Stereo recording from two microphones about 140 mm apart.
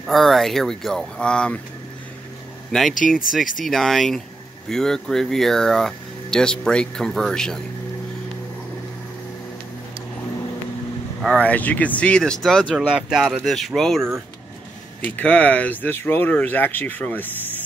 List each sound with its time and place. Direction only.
0.0 s speech: centre (ahead or behind)
2.7 s speech: 5° left (ahead or behind)
11.2 s speech: 5° left (ahead or behind)
15.0 s speech: 10° left (ahead or behind)